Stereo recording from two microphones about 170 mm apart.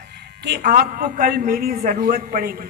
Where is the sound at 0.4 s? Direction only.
65° right (ahead or behind).